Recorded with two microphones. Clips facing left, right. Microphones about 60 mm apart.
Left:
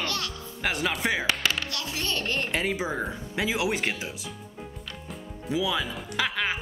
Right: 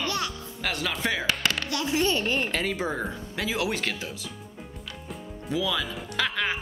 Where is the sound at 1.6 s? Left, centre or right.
Right.